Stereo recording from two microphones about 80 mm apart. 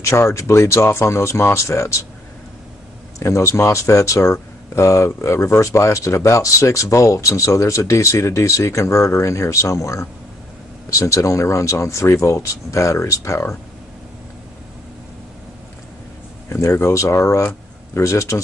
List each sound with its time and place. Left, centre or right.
0.0 s speech: left
3.2 s speech: left
16.4 s speech: left